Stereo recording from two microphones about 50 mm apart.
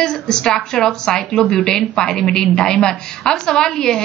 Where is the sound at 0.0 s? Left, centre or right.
Centre.